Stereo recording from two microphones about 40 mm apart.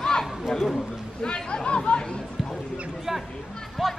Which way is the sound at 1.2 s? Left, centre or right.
Left.